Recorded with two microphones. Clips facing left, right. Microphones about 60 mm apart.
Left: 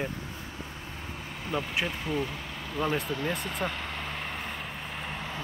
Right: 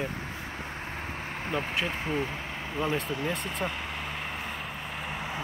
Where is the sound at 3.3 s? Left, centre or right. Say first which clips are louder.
Even; centre.